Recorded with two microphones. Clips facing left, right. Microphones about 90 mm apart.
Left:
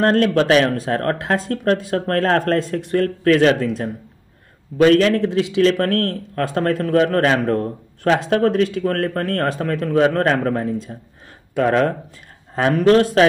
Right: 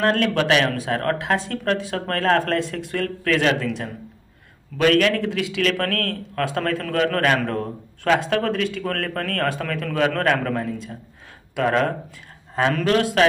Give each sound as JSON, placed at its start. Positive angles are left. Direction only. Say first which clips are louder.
{"t": 0.0, "sound": "a man's voice", "louder": "left 4 dB", "side_deg": 35}